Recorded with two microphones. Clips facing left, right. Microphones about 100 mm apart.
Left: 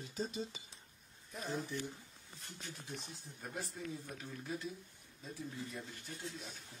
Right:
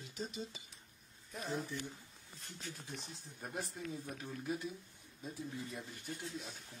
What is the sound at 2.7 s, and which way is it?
Speech, centre (ahead or behind).